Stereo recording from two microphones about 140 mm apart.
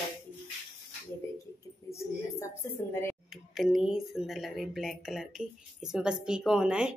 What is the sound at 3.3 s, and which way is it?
Speech, centre (ahead or behind).